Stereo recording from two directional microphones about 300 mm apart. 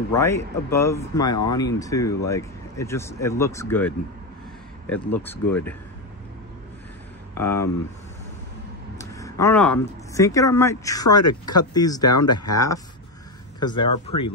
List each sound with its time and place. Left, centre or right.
0.1 s speech: centre
7.3 s speech: centre
8.9 s speech: centre